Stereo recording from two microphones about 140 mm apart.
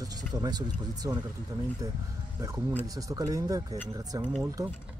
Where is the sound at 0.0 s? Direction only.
25° right (ahead or behind).